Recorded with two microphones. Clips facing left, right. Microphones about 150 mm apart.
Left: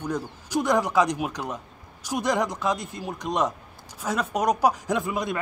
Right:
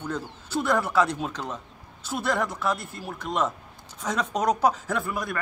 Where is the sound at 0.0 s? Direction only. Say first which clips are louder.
Left 3 dB; 15° left (ahead or behind).